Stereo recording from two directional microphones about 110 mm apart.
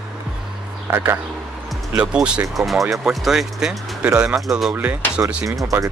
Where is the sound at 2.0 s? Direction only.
10° right (ahead or behind).